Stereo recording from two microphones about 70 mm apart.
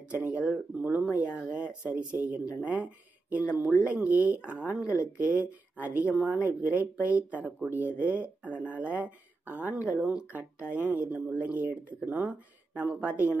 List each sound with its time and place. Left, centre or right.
0.1 s speech: right
9.9 s speech: centre
10.3 s speech: right